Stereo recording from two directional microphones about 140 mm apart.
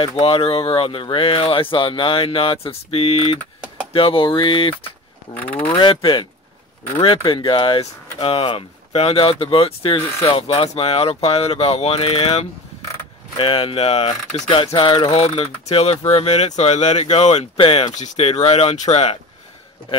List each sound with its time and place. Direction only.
0.2 s speech: 40° left (ahead or behind)
5.3 s speech: 10° left (ahead or behind)
5.8 s speech: 35° left (ahead or behind)
7.2 s speech: 35° left (ahead or behind); by 17.5 s 55° left (ahead or behind)
17.6 s speech: 40° left (ahead or behind)
17.9 s speech: 55° left (ahead or behind)